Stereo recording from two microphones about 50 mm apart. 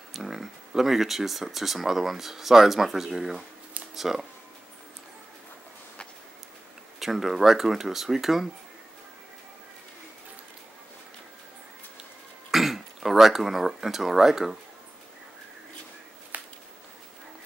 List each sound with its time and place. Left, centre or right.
0.1 s speech: centre
7.0 s speech: centre
12.4 s speech: centre
16.3 s a sound: right